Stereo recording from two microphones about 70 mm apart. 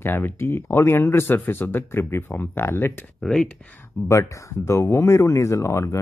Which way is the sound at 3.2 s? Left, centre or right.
Centre.